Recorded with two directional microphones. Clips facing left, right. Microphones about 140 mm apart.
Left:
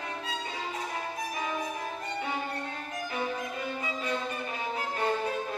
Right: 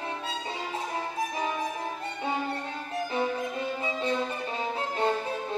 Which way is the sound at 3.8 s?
25° right (ahead or behind).